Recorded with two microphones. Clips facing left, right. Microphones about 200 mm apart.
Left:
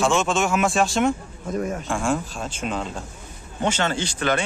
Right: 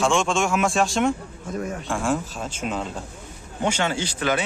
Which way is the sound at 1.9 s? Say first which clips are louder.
Right 3 dB; centre (ahead or behind).